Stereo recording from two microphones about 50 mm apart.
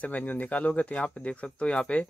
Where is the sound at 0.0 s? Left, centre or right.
Left.